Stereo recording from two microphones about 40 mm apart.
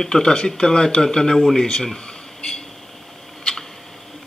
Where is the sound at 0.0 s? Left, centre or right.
Centre.